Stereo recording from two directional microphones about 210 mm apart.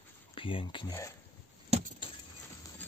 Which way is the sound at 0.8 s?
15° left (ahead or behind).